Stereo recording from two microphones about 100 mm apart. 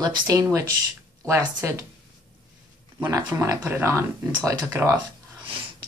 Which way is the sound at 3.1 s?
35° right (ahead or behind).